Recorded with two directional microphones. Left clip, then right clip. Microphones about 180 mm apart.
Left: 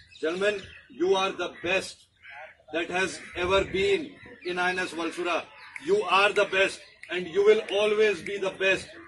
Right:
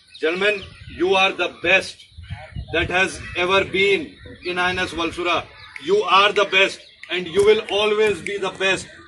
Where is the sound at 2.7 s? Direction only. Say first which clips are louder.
Right 9 dB; 15° left (ahead or behind).